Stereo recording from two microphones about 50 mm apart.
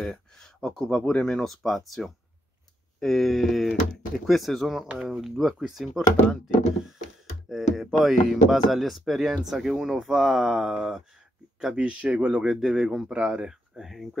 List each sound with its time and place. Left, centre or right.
0.1 s a sound: centre
0.8 s speech: left
1.2 s speech: centre
7.4 s speech: centre
11.7 s speech: right
12.4 s speech: centre
13.1 s speech: right
13.7 s speech: centre